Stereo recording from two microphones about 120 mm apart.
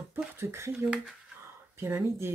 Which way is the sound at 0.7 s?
5° right (ahead or behind).